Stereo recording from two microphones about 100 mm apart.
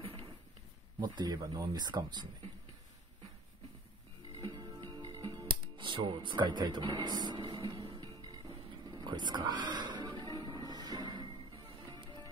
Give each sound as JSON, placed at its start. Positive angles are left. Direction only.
{"t": 0.0, "sound": "a sound", "side_deg": -70}
{"t": 0.9, "sound": "speech", "side_deg": -45}
{"t": 4.4, "sound": "music", "side_deg": -40}
{"t": 8.5, "sound": "music", "side_deg": -45}